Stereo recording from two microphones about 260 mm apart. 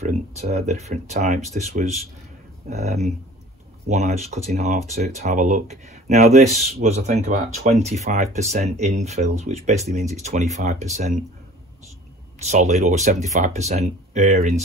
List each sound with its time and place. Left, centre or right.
0.0 s speech: right
12.4 s speech: right